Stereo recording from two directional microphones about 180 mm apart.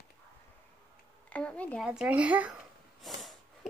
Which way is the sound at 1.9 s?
5° right (ahead or behind).